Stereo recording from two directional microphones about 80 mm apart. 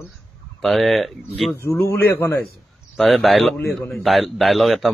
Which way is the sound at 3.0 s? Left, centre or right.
Centre.